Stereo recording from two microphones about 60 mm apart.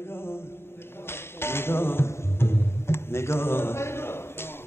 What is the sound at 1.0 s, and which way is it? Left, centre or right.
Music, left.